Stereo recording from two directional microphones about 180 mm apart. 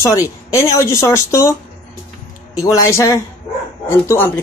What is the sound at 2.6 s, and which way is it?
Speech, 15° left (ahead or behind).